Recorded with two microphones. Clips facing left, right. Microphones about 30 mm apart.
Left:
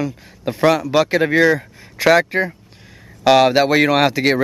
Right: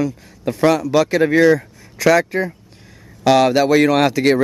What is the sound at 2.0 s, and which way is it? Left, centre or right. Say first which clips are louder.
Speech: left 1 dB; left.